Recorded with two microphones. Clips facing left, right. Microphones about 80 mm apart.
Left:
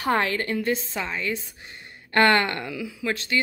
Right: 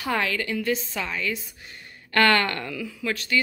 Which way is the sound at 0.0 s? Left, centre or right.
Left.